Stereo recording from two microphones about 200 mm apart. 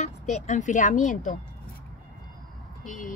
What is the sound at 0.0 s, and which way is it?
Speech, 35° left (ahead or behind).